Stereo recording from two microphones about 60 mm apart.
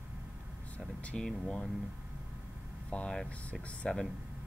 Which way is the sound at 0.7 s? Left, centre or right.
Left.